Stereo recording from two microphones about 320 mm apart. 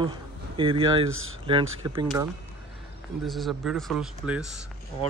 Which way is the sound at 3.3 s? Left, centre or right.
Centre.